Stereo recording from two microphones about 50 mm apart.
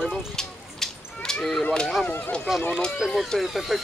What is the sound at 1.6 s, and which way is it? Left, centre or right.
Speech, centre.